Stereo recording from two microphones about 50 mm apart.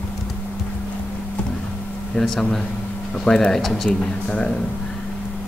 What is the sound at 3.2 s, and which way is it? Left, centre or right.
Speech, centre.